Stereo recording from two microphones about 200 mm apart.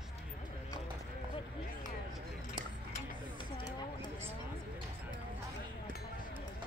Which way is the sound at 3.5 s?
20° left (ahead or behind).